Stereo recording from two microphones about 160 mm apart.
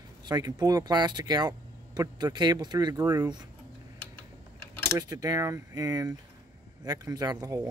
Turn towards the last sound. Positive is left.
turn(degrees=-25)  # may be behind; listen again after turning